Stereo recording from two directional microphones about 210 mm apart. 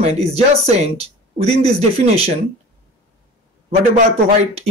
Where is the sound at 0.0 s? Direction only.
30° right (ahead or behind).